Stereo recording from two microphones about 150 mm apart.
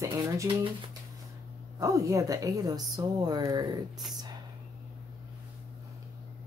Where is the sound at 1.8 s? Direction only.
20° right (ahead or behind).